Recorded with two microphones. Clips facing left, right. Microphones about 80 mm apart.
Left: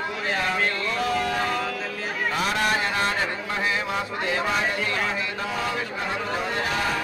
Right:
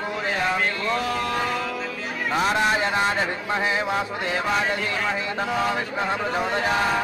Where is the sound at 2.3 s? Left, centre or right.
Right.